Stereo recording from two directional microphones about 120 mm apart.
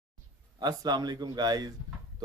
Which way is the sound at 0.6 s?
35° right (ahead or behind).